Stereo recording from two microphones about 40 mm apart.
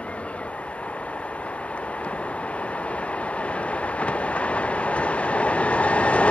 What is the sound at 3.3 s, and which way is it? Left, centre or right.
Train, left.